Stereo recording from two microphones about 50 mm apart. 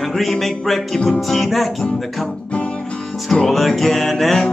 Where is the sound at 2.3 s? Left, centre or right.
Left.